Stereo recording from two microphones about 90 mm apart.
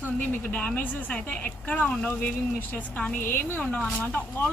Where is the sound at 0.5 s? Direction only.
15° left (ahead or behind).